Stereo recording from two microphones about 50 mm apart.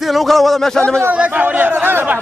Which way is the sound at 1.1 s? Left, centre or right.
Right.